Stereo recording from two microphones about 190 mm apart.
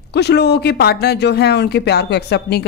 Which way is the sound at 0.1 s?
60° left (ahead or behind).